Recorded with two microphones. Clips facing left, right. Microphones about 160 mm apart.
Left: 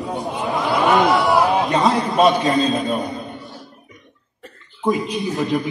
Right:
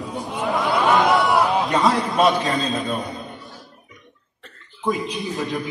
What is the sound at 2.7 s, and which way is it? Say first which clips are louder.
Speech: left 4 dB; 20° left (ahead or behind).